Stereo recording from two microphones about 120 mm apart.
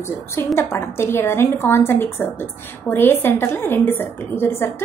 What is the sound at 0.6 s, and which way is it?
A woman's voice, 20° left (ahead or behind).